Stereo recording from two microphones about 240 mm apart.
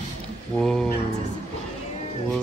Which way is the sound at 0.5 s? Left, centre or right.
Centre.